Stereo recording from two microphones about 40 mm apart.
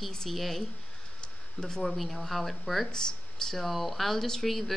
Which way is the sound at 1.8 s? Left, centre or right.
Centre.